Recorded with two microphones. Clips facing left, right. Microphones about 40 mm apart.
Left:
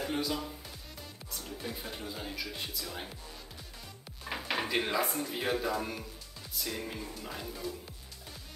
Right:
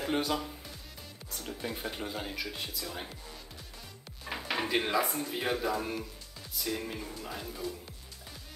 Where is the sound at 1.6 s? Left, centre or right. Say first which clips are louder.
Right 4 dB; centre.